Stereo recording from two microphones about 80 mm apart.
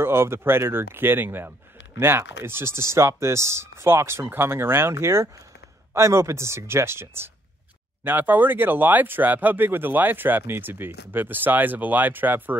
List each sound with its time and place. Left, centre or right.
0.0 s speech: right